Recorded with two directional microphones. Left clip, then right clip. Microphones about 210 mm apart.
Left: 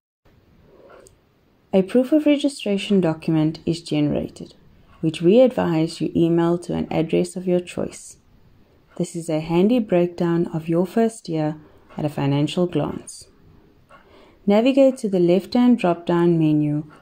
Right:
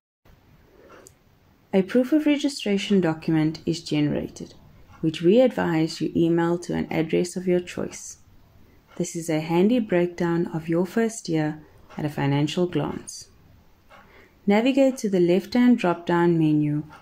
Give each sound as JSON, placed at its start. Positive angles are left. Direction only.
{"t": 1.7, "sound": "speech", "side_deg": 20}
{"t": 14.5, "sound": "speech", "side_deg": 20}